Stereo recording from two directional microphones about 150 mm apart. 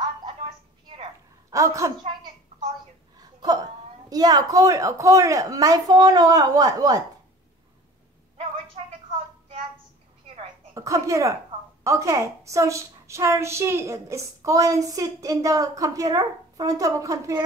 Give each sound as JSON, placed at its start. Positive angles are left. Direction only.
{"t": 1.5, "sound": "a woman's voice", "side_deg": -20}
{"t": 3.2, "sound": "a sound", "side_deg": -25}
{"t": 4.1, "sound": "a woman's voice", "side_deg": -25}
{"t": 10.7, "sound": "a woman's voice", "side_deg": -20}